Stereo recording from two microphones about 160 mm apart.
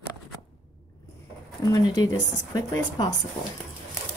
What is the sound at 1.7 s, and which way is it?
Speech, 25° left (ahead or behind).